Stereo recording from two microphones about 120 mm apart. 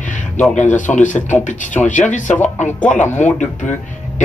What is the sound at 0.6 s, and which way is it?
Speech, 90° left.